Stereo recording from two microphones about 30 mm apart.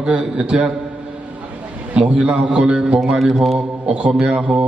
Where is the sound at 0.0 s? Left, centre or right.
Right.